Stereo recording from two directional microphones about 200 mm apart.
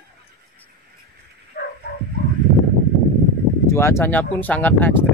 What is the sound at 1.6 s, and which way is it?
Dog, 50° left (ahead or behind).